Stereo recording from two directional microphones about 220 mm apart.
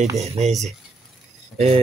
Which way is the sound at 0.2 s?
30° right (ahead or behind).